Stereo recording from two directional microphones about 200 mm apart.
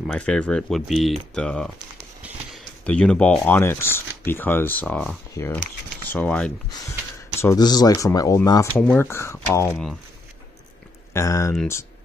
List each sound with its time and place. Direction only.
0.0 s speech: 5° left (ahead or behind)
2.2 s a sound: 5° right (ahead or behind)
2.8 s speech: 5° left (ahead or behind)
11.1 s speech: 15° left (ahead or behind)